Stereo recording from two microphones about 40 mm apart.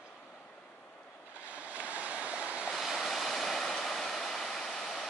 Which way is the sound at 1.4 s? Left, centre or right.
Right.